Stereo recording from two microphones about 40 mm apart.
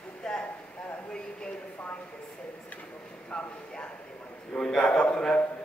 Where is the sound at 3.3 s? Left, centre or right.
Left.